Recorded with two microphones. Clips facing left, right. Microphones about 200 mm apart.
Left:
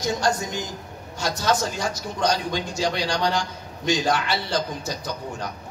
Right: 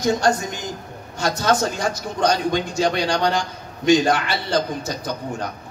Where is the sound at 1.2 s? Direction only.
55° right (ahead or behind).